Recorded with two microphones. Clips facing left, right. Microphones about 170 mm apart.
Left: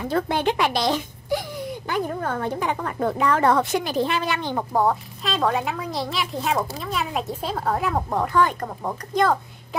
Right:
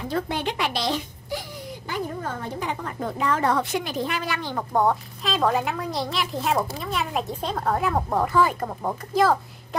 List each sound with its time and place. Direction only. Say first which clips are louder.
0.1 s a woman's voice: left 5 dB; 50° left (ahead or behind)
1.9 s a woman's voice: left 3 dB; 60° left (ahead or behind)
3.7 s speech: left 4 dB; 35° left (ahead or behind)
4.7 s a woman's voice: right 1 dB; centre (ahead or behind)